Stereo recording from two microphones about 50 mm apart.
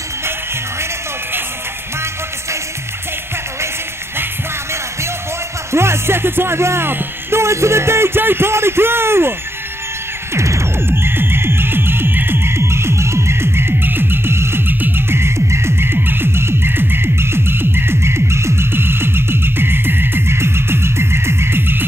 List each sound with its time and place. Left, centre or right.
5.7 s speech: right
10.3 s music: right
10.9 s music: right
14.7 s music: right